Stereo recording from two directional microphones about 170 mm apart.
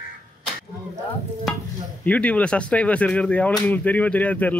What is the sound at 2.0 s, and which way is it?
Speech, 10° left (ahead or behind).